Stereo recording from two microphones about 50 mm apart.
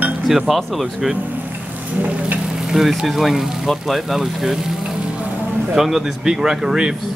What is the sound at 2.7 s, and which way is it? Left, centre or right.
Speech, centre.